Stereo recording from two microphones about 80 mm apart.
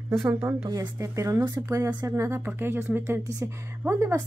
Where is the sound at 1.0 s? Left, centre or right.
Right.